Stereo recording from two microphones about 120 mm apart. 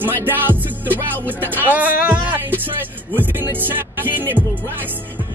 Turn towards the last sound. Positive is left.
turn(degrees=-15)  # may be behind; listen again after turning